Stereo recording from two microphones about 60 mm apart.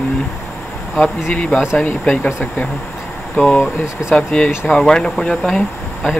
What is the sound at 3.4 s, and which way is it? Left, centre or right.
Speech, left.